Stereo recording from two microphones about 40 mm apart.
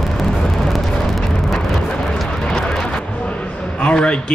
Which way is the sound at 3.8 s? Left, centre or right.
Left.